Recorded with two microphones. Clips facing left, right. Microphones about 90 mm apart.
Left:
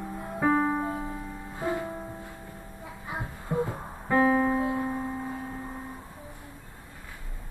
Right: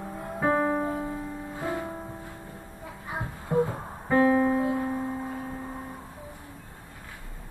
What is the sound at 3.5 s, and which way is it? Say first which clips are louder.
Music: right 4 dB; 10° right (ahead or behind).